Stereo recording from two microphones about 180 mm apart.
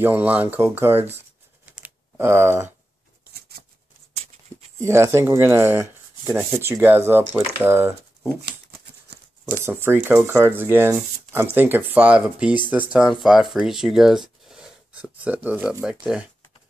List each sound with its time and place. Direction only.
0.0 s speech: 10° right (ahead or behind)
1.7 s computer keyboard: 10° right (ahead or behind)
3.3 s a sound: 60° right (ahead or behind)
4.7 s speech: 15° right (ahead or behind)
9.1 s a sound: 65° right (ahead or behind)
9.5 s speech: 15° right (ahead or behind)